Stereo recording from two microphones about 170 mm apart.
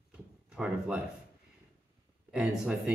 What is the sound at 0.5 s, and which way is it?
Speech, 5° right (ahead or behind).